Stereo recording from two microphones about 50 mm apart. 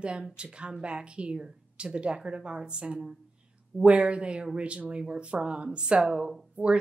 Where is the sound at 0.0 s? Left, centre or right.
Right.